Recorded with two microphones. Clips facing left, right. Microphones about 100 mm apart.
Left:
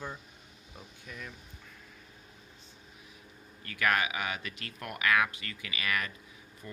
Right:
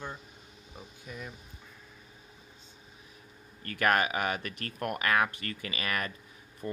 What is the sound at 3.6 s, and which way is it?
Speech, 45° right (ahead or behind).